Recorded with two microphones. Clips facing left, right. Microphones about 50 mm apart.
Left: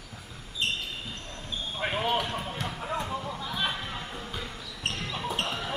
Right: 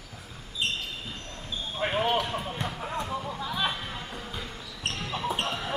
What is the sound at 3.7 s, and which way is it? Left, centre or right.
Music, centre.